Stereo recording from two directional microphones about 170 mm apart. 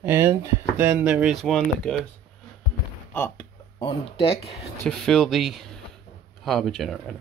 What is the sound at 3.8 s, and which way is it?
Speech, 35° left (ahead or behind).